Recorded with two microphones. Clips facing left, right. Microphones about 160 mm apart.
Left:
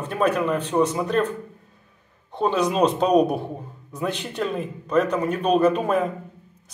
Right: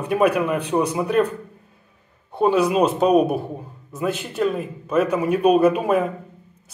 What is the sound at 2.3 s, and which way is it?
A man's voice, 10° right (ahead or behind).